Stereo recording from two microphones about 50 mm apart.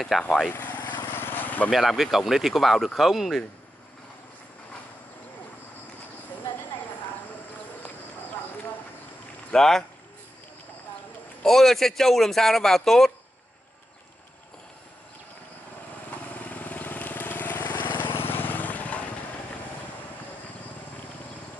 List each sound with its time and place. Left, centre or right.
0.1 s speech: centre
0.5 s vehicle: left
1.7 s speech: centre
9.5 s speech: centre
11.4 s speech: centre
16.3 s vehicle: left